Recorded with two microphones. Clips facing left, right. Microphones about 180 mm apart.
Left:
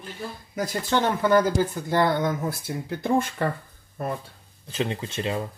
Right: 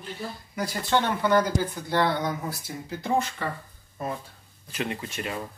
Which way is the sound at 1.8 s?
50° left (ahead or behind).